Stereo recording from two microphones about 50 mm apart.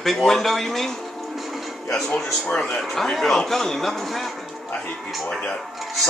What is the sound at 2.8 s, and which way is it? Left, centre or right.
Speech, centre.